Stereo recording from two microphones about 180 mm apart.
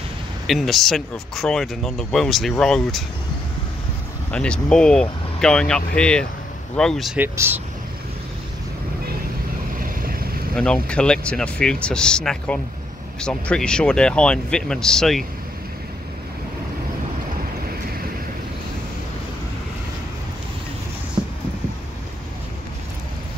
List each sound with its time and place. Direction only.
0.5 s speech: centre (ahead or behind)
4.3 s speech: 5° left (ahead or behind)
7.3 s speech: 10° right (ahead or behind)
9.8 s boat: 50° right (ahead or behind)
10.5 s speech: 5° left (ahead or behind)
21.2 s a sound: 20° right (ahead or behind)